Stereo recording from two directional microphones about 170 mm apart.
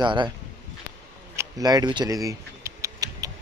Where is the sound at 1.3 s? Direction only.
20° right (ahead or behind).